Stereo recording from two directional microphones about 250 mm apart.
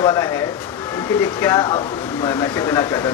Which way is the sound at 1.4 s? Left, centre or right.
Centre.